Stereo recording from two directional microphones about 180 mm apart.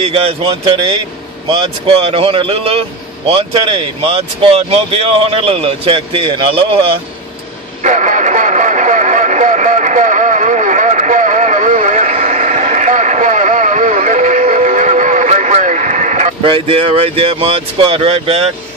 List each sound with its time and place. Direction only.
0.0 s speech: 35° right (ahead or behind)
7.8 s music: 45° right (ahead or behind)
16.4 s speech: 30° right (ahead or behind)